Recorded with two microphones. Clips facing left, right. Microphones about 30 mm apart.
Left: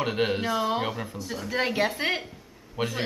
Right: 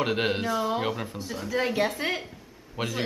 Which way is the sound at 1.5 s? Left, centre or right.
Centre.